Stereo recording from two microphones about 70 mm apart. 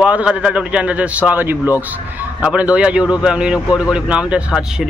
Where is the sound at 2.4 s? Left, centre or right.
Centre.